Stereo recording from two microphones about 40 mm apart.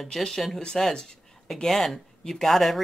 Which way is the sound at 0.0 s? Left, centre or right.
Centre.